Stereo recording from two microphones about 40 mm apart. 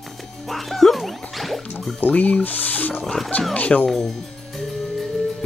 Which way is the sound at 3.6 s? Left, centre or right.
Left.